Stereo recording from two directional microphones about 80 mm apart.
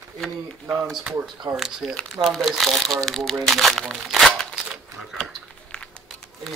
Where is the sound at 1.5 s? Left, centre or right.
Right.